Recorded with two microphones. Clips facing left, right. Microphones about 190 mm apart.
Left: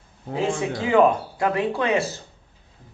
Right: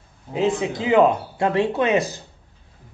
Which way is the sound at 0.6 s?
20° right (ahead or behind).